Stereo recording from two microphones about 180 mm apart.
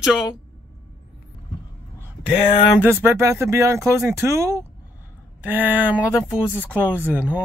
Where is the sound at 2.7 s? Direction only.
10° right (ahead or behind).